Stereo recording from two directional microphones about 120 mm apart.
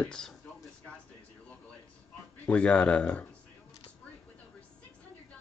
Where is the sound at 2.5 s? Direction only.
10° left (ahead or behind).